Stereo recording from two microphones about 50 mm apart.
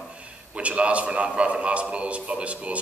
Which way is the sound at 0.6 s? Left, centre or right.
Right.